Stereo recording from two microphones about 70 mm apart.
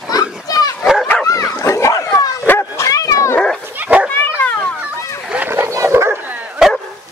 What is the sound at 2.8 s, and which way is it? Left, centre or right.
Dog, left.